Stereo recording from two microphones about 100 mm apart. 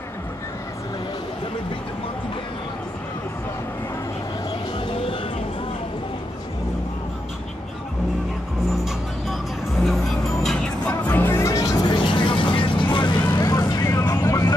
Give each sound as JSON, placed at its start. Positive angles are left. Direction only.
{"t": 4.7, "sound": "a sound", "side_deg": 65}
{"t": 9.8, "sound": "vehicle", "side_deg": 0}
{"t": 10.9, "sound": "music", "side_deg": 20}
{"t": 12.0, "sound": "vehicle", "side_deg": 60}
{"t": 13.4, "sound": "vehicle", "side_deg": 35}